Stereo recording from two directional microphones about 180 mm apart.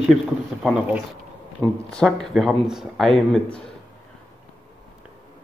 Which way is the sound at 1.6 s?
5° left (ahead or behind).